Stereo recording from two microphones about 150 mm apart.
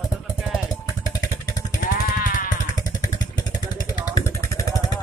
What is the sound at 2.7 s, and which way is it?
Vehicle, 25° left (ahead or behind).